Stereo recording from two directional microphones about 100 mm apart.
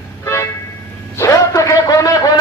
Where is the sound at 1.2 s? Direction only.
30° left (ahead or behind).